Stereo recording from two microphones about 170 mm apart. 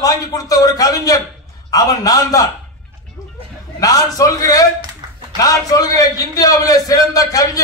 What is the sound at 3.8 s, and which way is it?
A man's voice, 20° left (ahead or behind).